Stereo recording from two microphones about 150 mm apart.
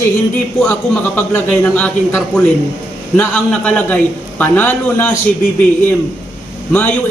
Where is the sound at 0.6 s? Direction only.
10° left (ahead or behind).